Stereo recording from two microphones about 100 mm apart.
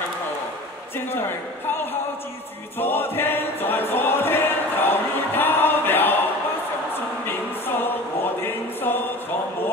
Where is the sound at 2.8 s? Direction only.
20° left (ahead or behind).